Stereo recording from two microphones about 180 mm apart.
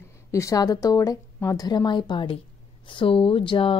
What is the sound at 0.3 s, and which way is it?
A woman's voice, 15° left (ahead or behind).